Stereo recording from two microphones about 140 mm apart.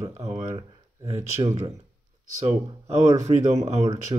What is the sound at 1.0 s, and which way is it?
Speech, 55° right (ahead or behind).